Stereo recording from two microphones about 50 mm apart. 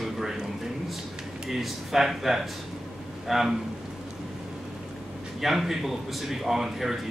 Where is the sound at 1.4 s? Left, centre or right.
Centre.